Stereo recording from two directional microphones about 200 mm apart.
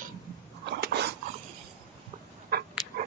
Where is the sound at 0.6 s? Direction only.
55° right (ahead or behind).